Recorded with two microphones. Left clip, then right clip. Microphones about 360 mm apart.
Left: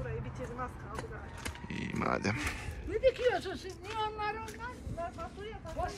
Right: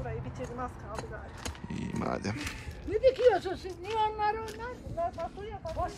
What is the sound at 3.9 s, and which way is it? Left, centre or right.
Child singing, right.